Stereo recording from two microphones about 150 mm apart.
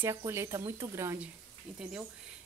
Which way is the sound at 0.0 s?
20° right (ahead or behind).